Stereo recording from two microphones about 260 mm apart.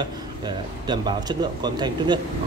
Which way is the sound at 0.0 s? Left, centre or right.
Centre.